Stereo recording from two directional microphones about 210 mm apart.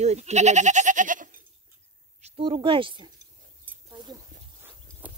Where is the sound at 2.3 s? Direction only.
25° right (ahead or behind).